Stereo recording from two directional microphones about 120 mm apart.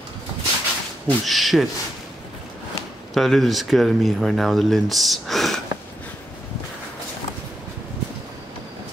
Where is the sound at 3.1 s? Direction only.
Centre (ahead or behind).